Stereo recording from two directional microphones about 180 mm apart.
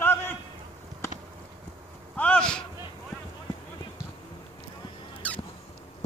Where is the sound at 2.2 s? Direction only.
5° left (ahead or behind).